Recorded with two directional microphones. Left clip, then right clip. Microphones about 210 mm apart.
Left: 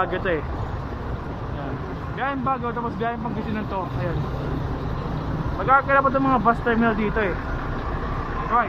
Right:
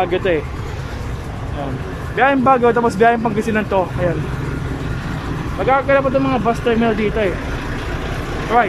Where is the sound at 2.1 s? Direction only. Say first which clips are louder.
Right 12 dB; 40° right (ahead or behind).